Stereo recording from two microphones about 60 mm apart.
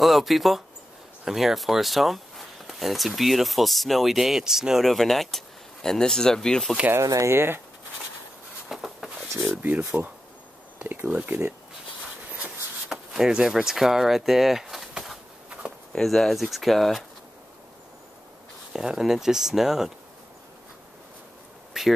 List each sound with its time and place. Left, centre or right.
0.0 s speech: centre
4.8 s speech: centre
7.2 s speech: right
8.6 s a sound: centre
10.8 s speech: right
12.9 s speech: centre
18.7 s speech: centre
21.7 s a sound: centre